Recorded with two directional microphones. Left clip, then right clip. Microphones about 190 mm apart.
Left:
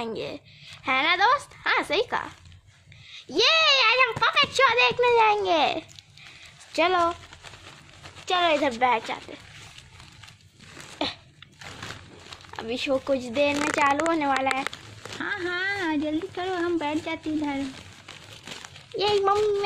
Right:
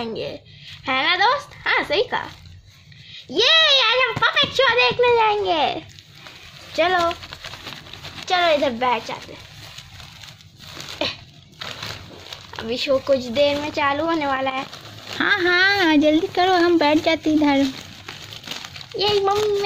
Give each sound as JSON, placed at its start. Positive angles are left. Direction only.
{"t": 0.0, "sound": "speech", "side_deg": 55}
{"t": 3.3, "sound": "speech", "side_deg": 60}
{"t": 8.3, "sound": "speech", "side_deg": 55}
{"t": 11.0, "sound": "a sound", "side_deg": 45}
{"t": 12.5, "sound": "speech", "side_deg": 45}
{"t": 15.1, "sound": "speech", "side_deg": -40}
{"t": 18.9, "sound": "speech", "side_deg": 55}